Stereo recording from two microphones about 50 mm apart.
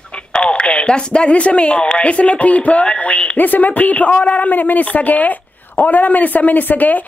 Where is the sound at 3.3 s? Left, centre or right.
Left.